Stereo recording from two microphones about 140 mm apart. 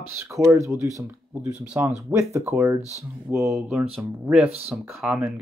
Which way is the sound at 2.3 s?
20° right (ahead or behind).